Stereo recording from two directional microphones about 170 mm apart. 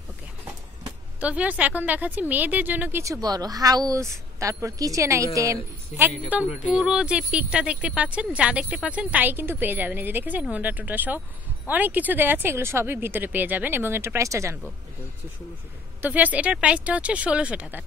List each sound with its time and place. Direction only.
1.2 s a woman's voice: 10° right (ahead or behind)
6.6 s a woman's voice: 5° right (ahead or behind)
16.0 s a woman's voice: 10° right (ahead or behind)